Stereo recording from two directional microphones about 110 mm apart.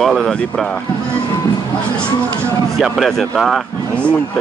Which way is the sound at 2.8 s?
Centre (ahead or behind).